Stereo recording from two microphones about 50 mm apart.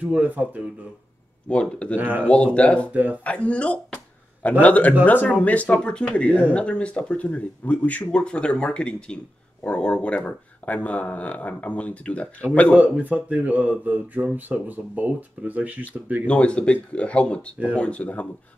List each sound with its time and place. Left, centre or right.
0.0 s speech: right
1.5 s speech: left
2.0 s speech: right
2.2 s speech: left
2.9 s speech: right
3.3 s speech: left
8.1 s speech: centre
12.7 s speech: right
16.3 s speech: left